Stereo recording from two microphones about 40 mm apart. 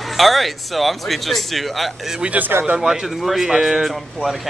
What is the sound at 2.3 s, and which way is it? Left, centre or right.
Speech, right.